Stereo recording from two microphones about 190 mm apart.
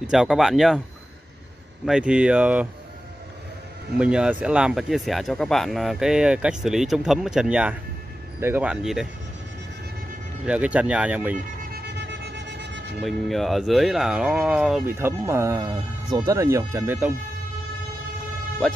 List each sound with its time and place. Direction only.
0.0 s speech: 5° right (ahead or behind)
1.9 s speech: 5° right (ahead or behind)
4.0 s speech: 5° right (ahead or behind)
10.4 s speech: 5° right (ahead or behind)
11.8 s a sound: 60° right (ahead or behind)
13.0 s speech: centre (ahead or behind)
18.6 s speech: 5° left (ahead or behind)